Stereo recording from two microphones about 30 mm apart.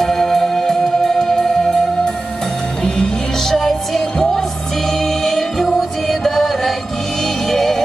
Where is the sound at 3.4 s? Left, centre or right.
Centre.